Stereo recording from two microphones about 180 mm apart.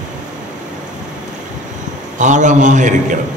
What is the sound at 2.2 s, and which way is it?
Speech, 45° right (ahead or behind).